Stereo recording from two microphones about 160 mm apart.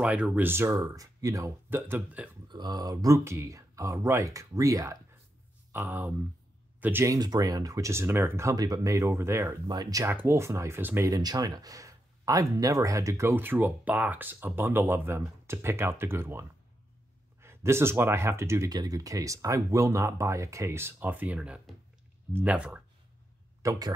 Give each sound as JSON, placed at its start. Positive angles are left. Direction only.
{"t": 0.0, "sound": "speech", "side_deg": -10}
{"t": 2.4, "sound": "speech", "side_deg": -25}
{"t": 23.6, "sound": "speech", "side_deg": -20}